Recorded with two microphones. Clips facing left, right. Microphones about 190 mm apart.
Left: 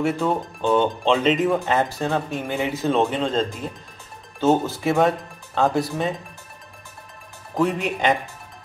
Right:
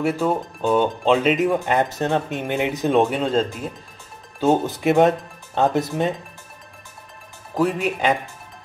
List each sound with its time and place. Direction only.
0.0 s speech: 5° right (ahead or behind)
4.4 s speech: 15° right (ahead or behind)
7.5 s speech: 5° right (ahead or behind)